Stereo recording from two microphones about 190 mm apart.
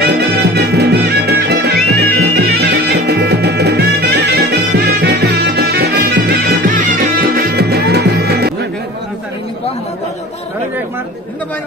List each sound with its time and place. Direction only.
0.0 s music: 55° right (ahead or behind)